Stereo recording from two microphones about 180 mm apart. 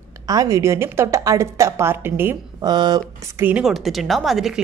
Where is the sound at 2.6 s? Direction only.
25° right (ahead or behind).